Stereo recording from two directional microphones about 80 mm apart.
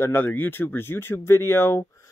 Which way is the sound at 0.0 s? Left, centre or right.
Left.